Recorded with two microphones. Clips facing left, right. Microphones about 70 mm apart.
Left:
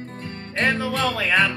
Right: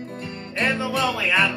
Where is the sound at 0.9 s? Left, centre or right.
Left.